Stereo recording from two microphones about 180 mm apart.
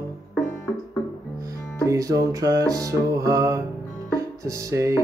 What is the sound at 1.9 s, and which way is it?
Music, 20° right (ahead or behind).